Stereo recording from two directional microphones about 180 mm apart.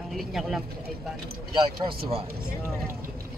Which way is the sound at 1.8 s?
30° right (ahead or behind).